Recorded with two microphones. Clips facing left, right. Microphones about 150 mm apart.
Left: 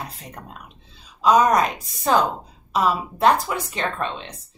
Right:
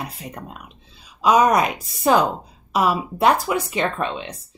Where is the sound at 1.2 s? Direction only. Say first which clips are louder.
Right 1 dB; 10° right (ahead or behind).